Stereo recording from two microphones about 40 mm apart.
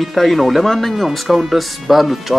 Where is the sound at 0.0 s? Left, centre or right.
Centre.